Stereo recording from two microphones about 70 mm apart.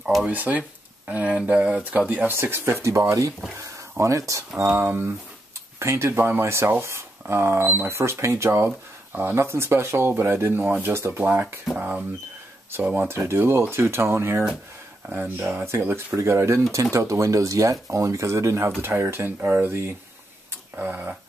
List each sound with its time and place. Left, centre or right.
0.0 s speech: centre
0.3 s speech: right
2.3 s speech: right
3.5 s a sound: right
4.6 s speech: right
12.8 s speech: centre
13.1 s speech: right
18.8 s speech: right